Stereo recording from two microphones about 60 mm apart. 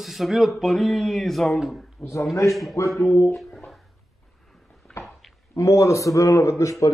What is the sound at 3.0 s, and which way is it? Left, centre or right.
Speech, left.